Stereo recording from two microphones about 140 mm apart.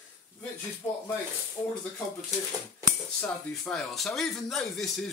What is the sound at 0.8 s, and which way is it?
Speech, 20° left (ahead or behind).